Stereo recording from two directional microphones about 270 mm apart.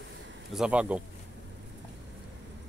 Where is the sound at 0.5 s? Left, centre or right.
Centre.